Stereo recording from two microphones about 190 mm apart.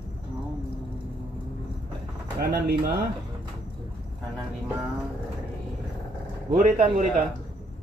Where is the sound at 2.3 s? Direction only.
55° right (ahead or behind).